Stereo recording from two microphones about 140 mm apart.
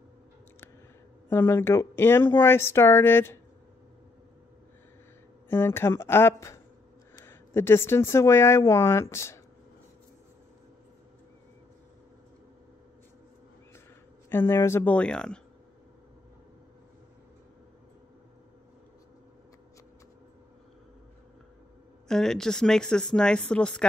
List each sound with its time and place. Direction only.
1.3 s speech: 15° left (ahead or behind)
5.5 s speech: 15° left (ahead or behind)
14.3 s speech: 15° left (ahead or behind)
22.0 s a woman's voice: 5° left (ahead or behind)